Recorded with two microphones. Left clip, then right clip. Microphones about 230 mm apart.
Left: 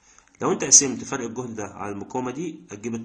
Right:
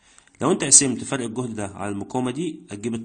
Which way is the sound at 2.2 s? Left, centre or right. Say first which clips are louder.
Right 3 dB; right.